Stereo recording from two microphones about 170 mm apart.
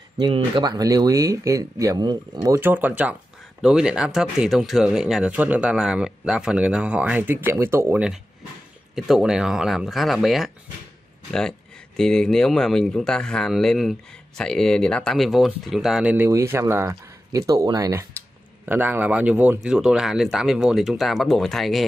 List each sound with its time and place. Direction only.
0.2 s speech: 25° right (ahead or behind); by 10.5 s centre (ahead or behind)
12.0 s speech: 5° left (ahead or behind)